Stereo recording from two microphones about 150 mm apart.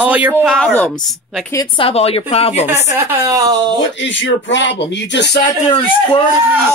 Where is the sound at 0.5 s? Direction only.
5° left (ahead or behind).